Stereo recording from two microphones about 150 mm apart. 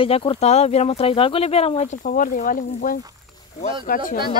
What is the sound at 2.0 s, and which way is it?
Speech, 65° left (ahead or behind).